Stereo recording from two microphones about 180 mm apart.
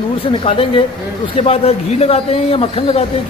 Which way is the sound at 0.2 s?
30° left (ahead or behind).